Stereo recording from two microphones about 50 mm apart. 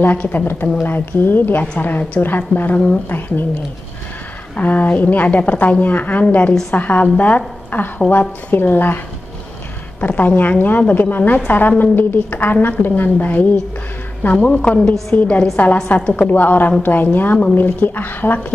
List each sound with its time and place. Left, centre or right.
0.0 s a woman's voice: left
4.6 s a woman's voice: left
14.4 s a woman's voice: left